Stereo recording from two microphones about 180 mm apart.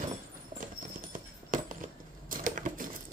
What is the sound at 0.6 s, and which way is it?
Coin, 50° right (ahead or behind).